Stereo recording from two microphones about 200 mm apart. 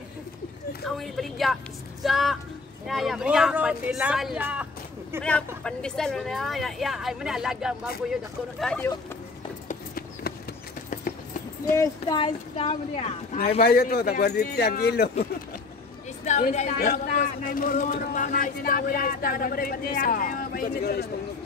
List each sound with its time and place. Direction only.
0.8 s speech: centre (ahead or behind)
5.6 s speech: 5° left (ahead or behind)
9.7 s horse: 45° left (ahead or behind)
11.7 s speech: 15° left (ahead or behind)
12.2 s a woman's voice: 30° left (ahead or behind)
13.6 s speech: 50° left (ahead or behind)
16.3 s a woman's voice: 35° left (ahead or behind)